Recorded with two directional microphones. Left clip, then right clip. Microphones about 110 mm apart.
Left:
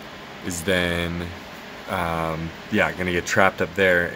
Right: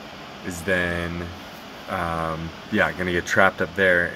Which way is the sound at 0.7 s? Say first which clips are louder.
Left 1 dB; 30° left (ahead or behind).